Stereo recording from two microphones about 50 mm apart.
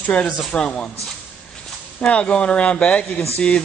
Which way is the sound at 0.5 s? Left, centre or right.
Centre.